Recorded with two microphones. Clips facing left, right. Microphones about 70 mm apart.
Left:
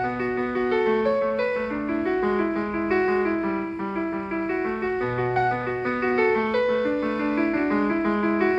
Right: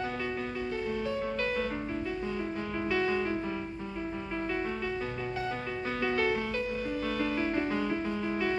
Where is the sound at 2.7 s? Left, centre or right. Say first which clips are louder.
Left 6 dB; left.